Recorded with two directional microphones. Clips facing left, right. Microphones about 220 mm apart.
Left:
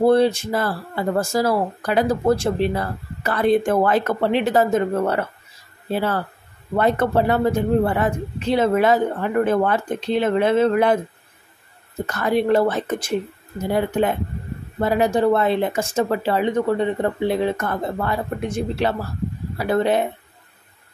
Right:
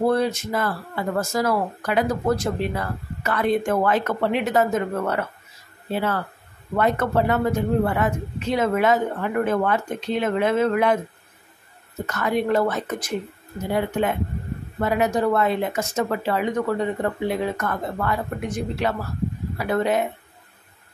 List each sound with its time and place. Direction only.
0.0 s speech: 30° left (ahead or behind)
12.1 s speech: 35° left (ahead or behind)
14.8 s speech: 30° left (ahead or behind)